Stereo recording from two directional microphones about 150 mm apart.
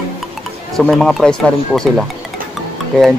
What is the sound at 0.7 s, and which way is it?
Speech, 5° left (ahead or behind).